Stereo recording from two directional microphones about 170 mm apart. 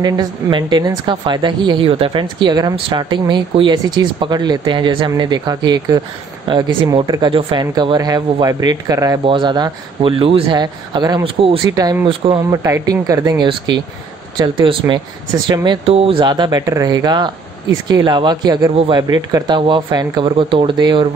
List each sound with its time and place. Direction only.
0.0 s a woman's voice: 25° right (ahead or behind)
11.7 s a woman's voice: 20° right (ahead or behind)